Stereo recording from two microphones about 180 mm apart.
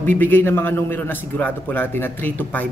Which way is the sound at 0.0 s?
10° left (ahead or behind).